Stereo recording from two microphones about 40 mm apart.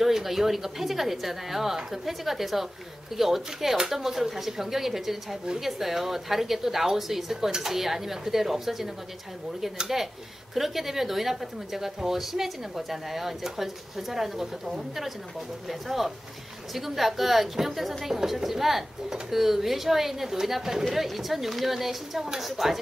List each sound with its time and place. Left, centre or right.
0.0 s a woman's voice: centre
9.9 s a woman's voice: centre
16.7 s a woman's voice: centre